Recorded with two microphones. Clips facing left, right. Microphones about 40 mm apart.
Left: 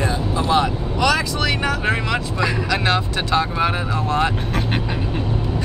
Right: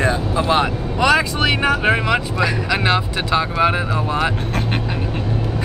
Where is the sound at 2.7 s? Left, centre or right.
Centre.